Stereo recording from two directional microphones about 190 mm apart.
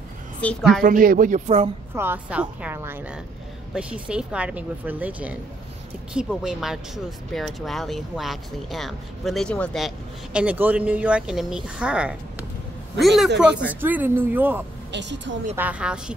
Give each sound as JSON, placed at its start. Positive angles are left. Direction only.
{"t": 0.4, "sound": "speech", "side_deg": 5}
{"t": 0.8, "sound": "speech", "side_deg": -50}
{"t": 2.0, "sound": "speech", "side_deg": -10}
{"t": 14.9, "sound": "speech", "side_deg": -70}
{"t": 15.5, "sound": "speech", "side_deg": -10}